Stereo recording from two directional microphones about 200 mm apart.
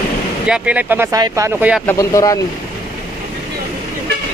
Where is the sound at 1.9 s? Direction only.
15° left (ahead or behind).